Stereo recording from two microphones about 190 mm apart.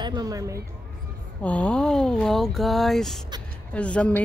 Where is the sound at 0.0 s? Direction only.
20° right (ahead or behind).